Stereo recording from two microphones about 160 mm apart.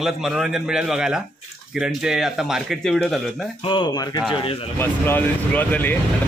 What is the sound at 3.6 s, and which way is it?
Speech, 30° left (ahead or behind).